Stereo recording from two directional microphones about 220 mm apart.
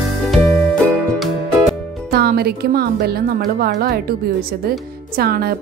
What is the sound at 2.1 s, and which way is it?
A woman's voice, 45° right (ahead or behind).